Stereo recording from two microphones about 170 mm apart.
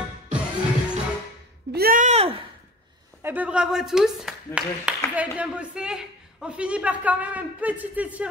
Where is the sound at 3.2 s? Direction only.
10° right (ahead or behind).